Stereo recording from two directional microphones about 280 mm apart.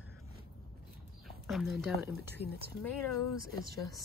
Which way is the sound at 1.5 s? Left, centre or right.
Centre.